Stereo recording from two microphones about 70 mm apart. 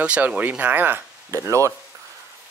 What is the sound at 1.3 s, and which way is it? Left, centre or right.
Speech, right.